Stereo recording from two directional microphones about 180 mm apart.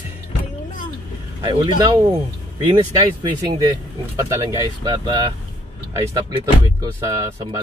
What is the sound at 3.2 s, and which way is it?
Speech, 20° right (ahead or behind).